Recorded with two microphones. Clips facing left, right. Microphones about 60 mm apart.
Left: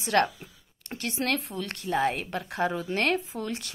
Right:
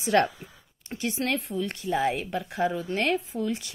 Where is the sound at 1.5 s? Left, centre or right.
Left.